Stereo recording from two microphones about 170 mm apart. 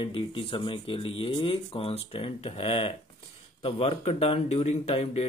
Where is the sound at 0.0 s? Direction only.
30° left (ahead or behind).